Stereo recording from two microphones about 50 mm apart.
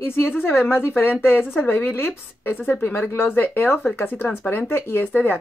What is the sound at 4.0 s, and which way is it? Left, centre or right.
Speech, left.